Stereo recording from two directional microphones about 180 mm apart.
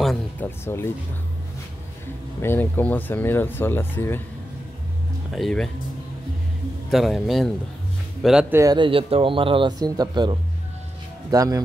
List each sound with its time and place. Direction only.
0.0 s music: centre (ahead or behind)
2.4 s speech: 10° left (ahead or behind)
5.3 s a man's voice: centre (ahead or behind)
6.9 s a man's voice: centre (ahead or behind)
8.5 s speech: 25° right (ahead or behind)